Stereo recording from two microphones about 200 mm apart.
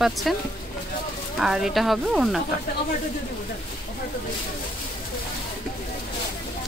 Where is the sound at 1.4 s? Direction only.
Centre (ahead or behind).